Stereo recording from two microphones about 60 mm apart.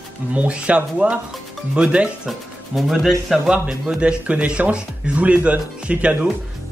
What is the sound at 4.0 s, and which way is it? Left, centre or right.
Speech, centre.